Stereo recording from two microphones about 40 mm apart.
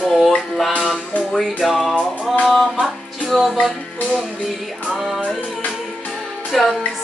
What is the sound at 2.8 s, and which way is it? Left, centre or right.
Music, centre.